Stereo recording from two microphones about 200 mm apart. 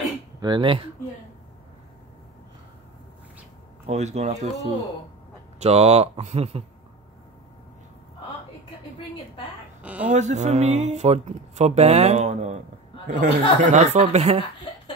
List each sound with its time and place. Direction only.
0.4 s speech: 25° right (ahead or behind)
3.8 s speech: 35° right (ahead or behind)
10.0 s speech: 35° right (ahead or behind)